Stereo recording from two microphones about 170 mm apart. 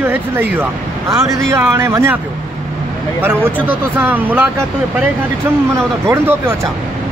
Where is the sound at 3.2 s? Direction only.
10° right (ahead or behind).